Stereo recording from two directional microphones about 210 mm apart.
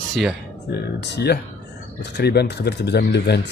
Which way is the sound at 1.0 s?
50° left (ahead or behind).